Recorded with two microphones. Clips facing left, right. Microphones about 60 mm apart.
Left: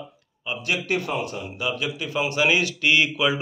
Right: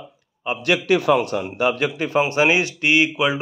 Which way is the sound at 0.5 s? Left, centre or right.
Right.